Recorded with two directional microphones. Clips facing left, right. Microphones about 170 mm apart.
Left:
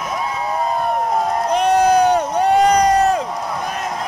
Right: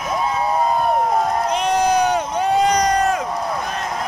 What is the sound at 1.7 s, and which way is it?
Crowd, 55° left (ahead or behind).